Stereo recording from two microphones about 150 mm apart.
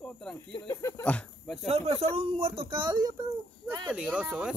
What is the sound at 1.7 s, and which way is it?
Speech, 45° right (ahead or behind).